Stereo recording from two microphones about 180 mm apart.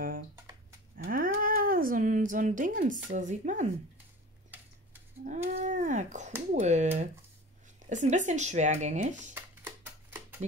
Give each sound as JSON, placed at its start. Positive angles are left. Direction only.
{"t": 0.9, "sound": "cat", "side_deg": -50}
{"t": 3.1, "sound": "speech", "side_deg": -45}
{"t": 5.2, "sound": "a sound", "side_deg": -40}
{"t": 6.5, "sound": "speech", "side_deg": -40}
{"t": 9.3, "sound": "music", "side_deg": -10}